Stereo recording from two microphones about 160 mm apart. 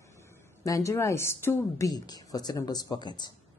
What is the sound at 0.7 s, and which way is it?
Speech, 20° left (ahead or behind).